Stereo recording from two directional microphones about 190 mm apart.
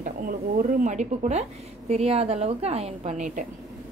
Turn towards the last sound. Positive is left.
turn(degrees=-40)  # may be behind; listen again after turning